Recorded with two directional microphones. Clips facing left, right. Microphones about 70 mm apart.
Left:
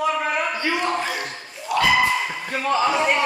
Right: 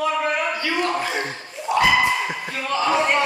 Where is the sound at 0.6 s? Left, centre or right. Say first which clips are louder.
Even; centre.